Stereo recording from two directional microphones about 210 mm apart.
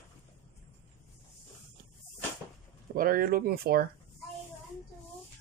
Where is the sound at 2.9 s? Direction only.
45° right (ahead or behind).